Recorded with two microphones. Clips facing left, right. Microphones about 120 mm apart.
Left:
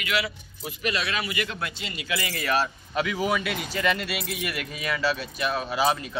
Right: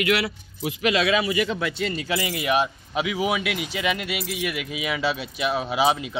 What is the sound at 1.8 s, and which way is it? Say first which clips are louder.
Speech: right 6 dB; 35° right (ahead or behind).